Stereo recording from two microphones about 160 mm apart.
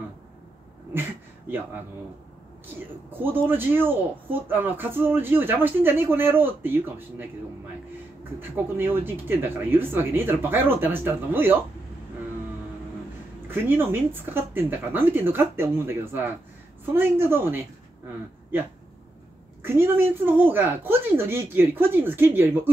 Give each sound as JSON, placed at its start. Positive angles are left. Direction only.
{"t": 2.6, "sound": "speech", "side_deg": -15}
{"t": 8.4, "sound": "speech", "side_deg": -15}
{"t": 13.5, "sound": "speech", "side_deg": -15}
{"t": 19.6, "sound": "speech", "side_deg": -15}